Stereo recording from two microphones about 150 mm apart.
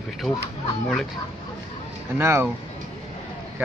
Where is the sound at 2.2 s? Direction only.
15° right (ahead or behind).